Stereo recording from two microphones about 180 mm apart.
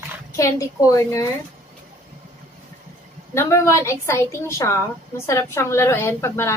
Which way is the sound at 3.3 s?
15° left (ahead or behind).